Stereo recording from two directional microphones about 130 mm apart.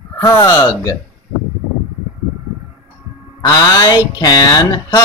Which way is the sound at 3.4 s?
30° left (ahead or behind).